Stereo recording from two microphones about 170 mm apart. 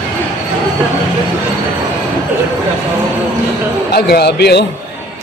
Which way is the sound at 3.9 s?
70° left (ahead or behind).